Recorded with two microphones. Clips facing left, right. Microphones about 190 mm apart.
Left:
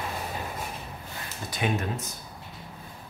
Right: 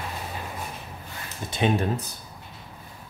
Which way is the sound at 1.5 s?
30° right (ahead or behind).